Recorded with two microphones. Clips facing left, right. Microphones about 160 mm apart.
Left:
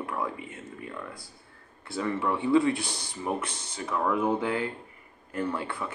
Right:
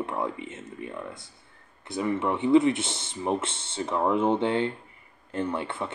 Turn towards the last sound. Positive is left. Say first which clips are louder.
# right 2 dB
turn(degrees=-25)  # may be behind; listen again after turning